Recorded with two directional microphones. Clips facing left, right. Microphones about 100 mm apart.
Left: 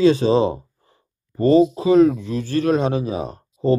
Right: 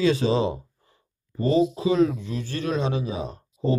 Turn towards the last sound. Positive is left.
turn(degrees=45)  # may be behind; listen again after turning